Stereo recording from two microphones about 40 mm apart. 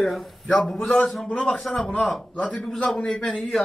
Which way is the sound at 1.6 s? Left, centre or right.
Centre.